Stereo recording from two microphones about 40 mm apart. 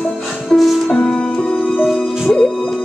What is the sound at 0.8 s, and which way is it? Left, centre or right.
Music, centre.